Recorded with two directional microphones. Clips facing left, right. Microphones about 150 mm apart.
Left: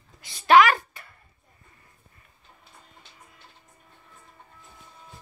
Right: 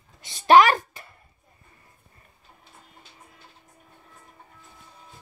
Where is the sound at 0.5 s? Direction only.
35° right (ahead or behind).